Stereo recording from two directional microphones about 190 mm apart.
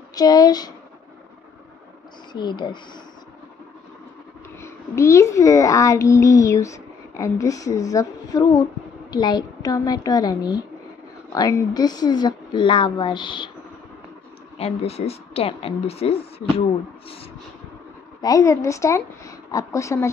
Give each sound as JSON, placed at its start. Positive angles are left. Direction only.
{"t": 0.1, "sound": "speech", "side_deg": 20}
{"t": 2.3, "sound": "speech", "side_deg": 25}
{"t": 4.6, "sound": "a child's voice", "side_deg": 15}
{"t": 14.6, "sound": "a woman's voice", "side_deg": 30}
{"t": 18.2, "sound": "a woman's voice", "side_deg": 20}